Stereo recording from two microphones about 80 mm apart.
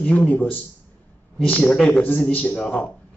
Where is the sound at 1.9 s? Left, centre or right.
Centre.